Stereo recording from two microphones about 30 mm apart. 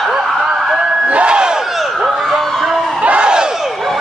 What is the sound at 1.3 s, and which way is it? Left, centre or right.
Battle cry, right.